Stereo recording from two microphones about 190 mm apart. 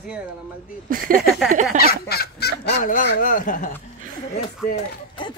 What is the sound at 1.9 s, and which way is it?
Fowl, 55° left (ahead or behind).